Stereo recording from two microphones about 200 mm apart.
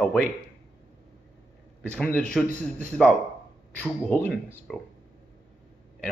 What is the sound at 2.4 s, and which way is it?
Speech, 35° right (ahead or behind).